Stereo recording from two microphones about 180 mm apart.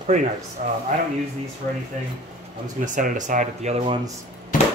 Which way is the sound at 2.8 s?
45° right (ahead or behind).